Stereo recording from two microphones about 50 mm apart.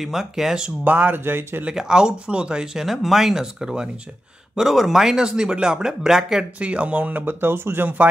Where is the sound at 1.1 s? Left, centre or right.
Right.